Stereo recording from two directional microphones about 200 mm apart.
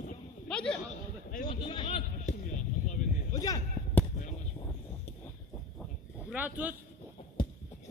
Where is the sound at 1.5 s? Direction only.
25° left (ahead or behind).